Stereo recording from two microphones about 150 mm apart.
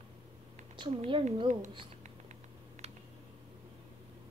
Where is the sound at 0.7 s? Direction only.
35° right (ahead or behind).